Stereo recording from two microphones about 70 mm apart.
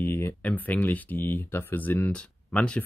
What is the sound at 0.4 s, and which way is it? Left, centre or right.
Speech, centre.